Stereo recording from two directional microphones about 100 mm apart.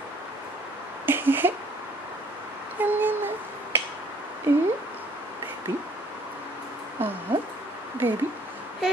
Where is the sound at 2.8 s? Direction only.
20° right (ahead or behind).